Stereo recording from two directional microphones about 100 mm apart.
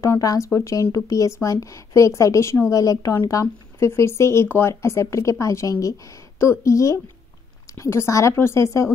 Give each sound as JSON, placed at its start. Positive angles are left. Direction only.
{"t": 0.0, "sound": "speech", "side_deg": 35}